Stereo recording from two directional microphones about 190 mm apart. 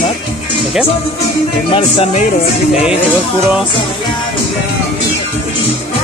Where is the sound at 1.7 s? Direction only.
30° left (ahead or behind).